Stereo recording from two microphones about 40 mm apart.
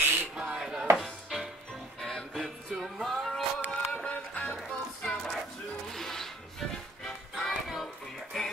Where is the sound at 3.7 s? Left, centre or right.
Left.